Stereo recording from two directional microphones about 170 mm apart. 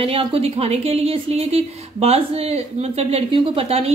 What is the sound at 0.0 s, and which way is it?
Speech, 35° right (ahead or behind).